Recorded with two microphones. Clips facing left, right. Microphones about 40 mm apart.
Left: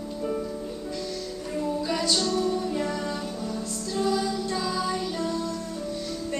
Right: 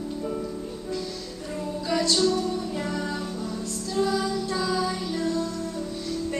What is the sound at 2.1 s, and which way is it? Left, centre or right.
Music, centre.